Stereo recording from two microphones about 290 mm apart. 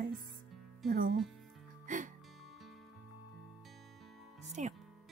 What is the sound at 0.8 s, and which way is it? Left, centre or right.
Speech, right.